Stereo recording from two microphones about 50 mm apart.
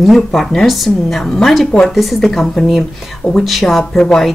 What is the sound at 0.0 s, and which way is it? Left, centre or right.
A woman's voice, centre.